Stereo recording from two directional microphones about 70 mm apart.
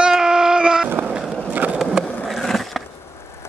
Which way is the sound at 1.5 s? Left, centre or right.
Right.